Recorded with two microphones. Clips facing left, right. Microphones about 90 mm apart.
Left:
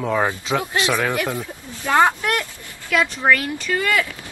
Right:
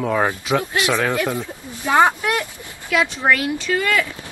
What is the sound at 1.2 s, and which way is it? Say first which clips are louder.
Speech: right 2 dB; 15° right (ahead or behind).